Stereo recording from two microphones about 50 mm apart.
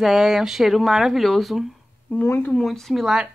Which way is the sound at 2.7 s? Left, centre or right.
Centre.